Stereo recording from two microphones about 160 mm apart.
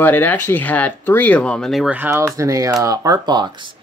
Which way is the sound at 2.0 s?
15° right (ahead or behind).